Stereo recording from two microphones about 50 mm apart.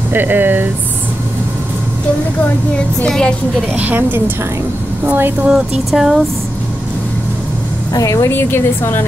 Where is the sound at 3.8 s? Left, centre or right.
Right.